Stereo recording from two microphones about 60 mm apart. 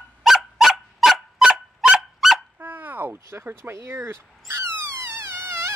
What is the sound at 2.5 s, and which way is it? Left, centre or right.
Dog, right.